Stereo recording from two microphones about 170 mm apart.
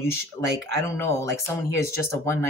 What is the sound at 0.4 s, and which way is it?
Speech, 35° left (ahead or behind).